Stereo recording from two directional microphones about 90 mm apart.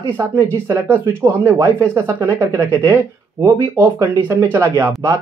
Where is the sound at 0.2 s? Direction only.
30° right (ahead or behind).